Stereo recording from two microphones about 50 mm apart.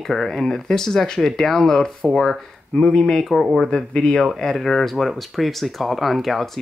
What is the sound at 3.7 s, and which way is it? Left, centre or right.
Speech, centre.